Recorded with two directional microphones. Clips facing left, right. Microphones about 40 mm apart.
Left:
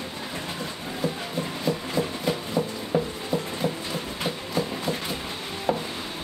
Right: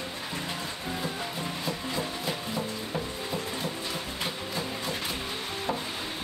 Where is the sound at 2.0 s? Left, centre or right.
Left.